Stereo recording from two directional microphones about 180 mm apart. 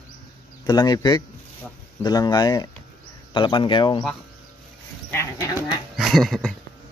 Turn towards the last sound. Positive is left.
turn(degrees=0)  # may be behind; listen again after turning